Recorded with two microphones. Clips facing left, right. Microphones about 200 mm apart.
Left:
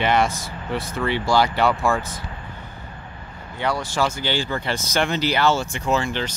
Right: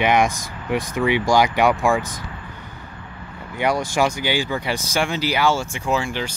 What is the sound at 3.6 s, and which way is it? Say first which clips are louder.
Speech: right 3 dB; 15° right (ahead or behind).